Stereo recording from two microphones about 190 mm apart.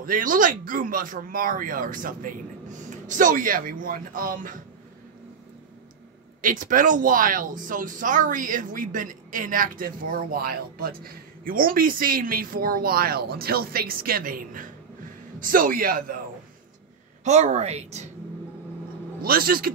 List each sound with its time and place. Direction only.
0.0 s speech: 45° right (ahead or behind)
6.4 s speech: 45° right (ahead or behind)
17.2 s a woman's voice: 35° right (ahead or behind)
19.2 s speech: 50° right (ahead or behind)